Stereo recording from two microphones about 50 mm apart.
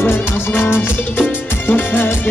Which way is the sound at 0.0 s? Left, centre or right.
Left.